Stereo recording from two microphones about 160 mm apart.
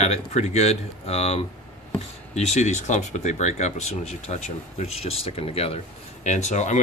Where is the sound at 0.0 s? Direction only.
45° left (ahead or behind).